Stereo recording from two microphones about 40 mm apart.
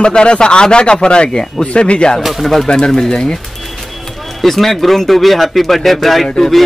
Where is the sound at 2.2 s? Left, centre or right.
Centre.